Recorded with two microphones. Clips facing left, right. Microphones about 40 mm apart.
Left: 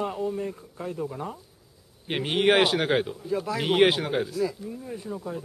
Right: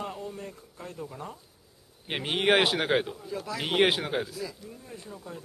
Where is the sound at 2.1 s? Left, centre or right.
Centre.